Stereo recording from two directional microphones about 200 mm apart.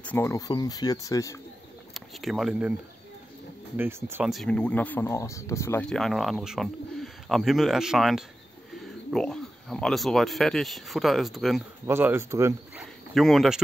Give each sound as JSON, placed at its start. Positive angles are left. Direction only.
{"t": 0.0, "sound": "speech", "side_deg": 10}
{"t": 2.0, "sound": "speech", "side_deg": 0}
{"t": 3.7, "sound": "speech", "side_deg": -10}
{"t": 13.1, "sound": "speech", "side_deg": 0}